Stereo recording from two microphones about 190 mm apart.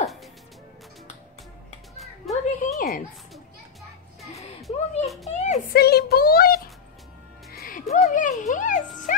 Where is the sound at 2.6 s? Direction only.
40° left (ahead or behind).